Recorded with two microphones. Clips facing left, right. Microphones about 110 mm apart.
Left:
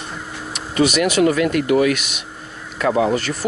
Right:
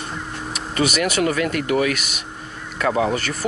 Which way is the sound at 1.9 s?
45° right (ahead or behind).